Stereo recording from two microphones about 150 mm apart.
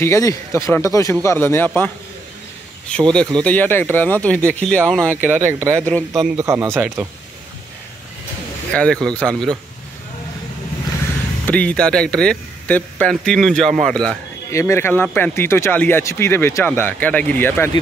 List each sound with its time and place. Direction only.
0.0 s speech: 20° left (ahead or behind)
2.9 s speech: 5° left (ahead or behind)
5.0 s speech: 15° right (ahead or behind)
5.9 s speech: 10° left (ahead or behind)
6.3 s speech: 20° right (ahead or behind)
8.7 s speech: 5° left (ahead or behind)
11.4 s speech: 10° left (ahead or behind)
14.5 s speech: 20° left (ahead or behind)